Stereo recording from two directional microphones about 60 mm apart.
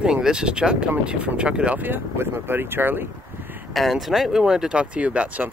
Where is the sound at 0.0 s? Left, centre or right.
Centre.